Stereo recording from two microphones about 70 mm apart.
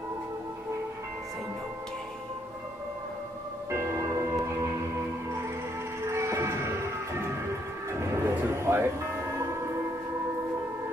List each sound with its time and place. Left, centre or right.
3.7 s music: right
6.0 s music: right